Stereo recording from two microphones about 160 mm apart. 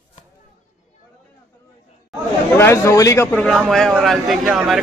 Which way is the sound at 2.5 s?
15° left (ahead or behind).